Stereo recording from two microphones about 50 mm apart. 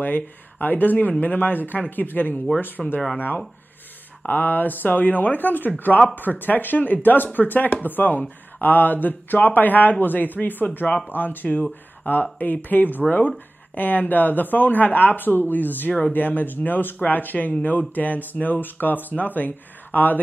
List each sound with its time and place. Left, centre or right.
0.0 s speech: left
2.8 s speech: centre
4.3 s speech: left